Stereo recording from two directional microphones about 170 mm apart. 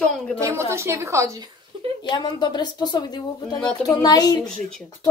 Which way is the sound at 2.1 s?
25° left (ahead or behind).